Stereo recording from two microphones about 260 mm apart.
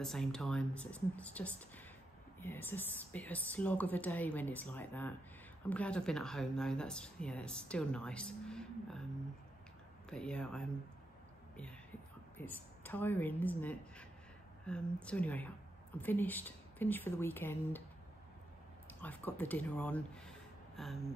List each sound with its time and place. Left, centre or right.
0.0 s speech: centre
10.0 s speech: centre
12.4 s speech: centre
18.9 s speech: centre